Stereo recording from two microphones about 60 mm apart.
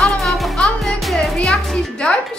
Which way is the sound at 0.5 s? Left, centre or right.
Centre.